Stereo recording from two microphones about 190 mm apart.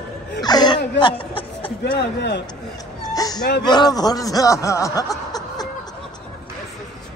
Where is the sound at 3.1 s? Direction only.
20° left (ahead or behind).